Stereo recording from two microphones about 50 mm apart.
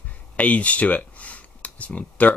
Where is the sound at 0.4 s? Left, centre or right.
Left.